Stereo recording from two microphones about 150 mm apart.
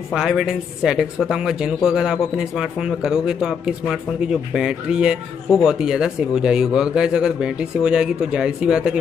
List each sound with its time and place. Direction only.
0.1 s speech: 5° right (ahead or behind)